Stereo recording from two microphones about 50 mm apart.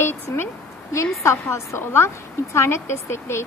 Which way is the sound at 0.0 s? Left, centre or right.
Left.